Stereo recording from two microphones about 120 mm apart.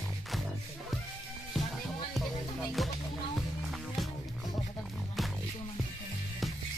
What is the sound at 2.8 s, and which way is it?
Music, centre (ahead or behind).